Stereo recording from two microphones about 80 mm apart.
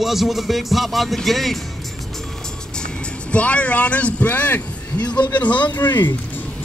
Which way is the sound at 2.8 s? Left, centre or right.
Centre.